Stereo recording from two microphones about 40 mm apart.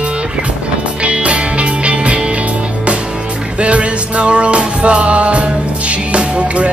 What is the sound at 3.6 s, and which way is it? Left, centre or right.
Music, right.